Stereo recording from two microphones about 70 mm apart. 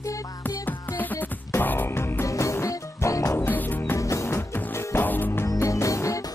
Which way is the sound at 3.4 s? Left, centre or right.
Left.